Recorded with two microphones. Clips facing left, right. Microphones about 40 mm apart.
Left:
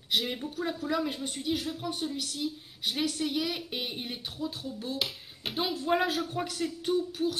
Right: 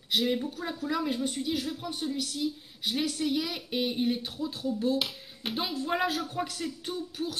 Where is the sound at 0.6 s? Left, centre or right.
Centre.